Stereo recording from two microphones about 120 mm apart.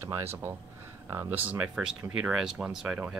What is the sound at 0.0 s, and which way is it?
Speech, 20° right (ahead or behind).